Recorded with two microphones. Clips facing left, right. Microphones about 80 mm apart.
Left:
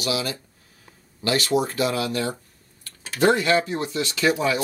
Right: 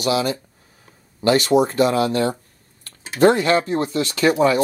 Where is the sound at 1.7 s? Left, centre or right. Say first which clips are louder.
Right 6 dB; right.